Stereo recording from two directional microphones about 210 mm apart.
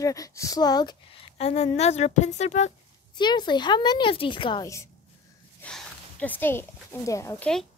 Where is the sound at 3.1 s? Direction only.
20° left (ahead or behind); by 7.7 s 5° left (ahead or behind).